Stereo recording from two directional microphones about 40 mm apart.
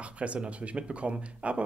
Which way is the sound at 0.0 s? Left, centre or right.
Right.